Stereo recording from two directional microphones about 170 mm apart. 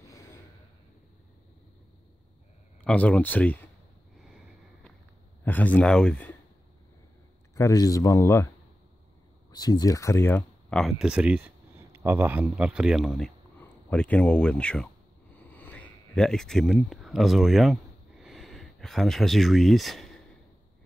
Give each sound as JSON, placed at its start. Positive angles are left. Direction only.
{"t": 0.0, "sound": "gasp", "side_deg": 15}
{"t": 2.8, "sound": "speech", "side_deg": 10}
{"t": 5.4, "sound": "speech", "side_deg": 10}
{"t": 7.5, "sound": "speech", "side_deg": 20}
{"t": 9.5, "sound": "speech", "side_deg": 20}
{"t": 10.7, "sound": "speech", "side_deg": 0}
{"t": 15.3, "sound": "a sound", "side_deg": 10}